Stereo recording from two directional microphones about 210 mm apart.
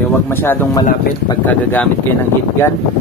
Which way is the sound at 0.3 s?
10° left (ahead or behind).